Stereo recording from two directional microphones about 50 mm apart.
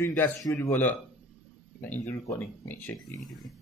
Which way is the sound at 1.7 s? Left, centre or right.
Left.